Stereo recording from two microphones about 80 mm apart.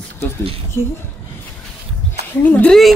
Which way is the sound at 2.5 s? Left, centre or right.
Centre.